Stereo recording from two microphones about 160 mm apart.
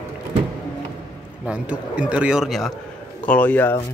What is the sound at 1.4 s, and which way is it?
A man's voice, 5° right (ahead or behind).